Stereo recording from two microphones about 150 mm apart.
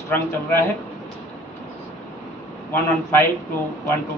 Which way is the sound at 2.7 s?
15° left (ahead or behind).